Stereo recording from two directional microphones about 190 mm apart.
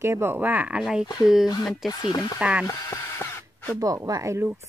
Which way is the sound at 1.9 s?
20° left (ahead or behind).